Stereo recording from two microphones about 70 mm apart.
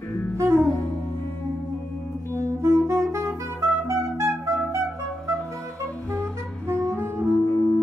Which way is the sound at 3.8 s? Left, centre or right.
Right.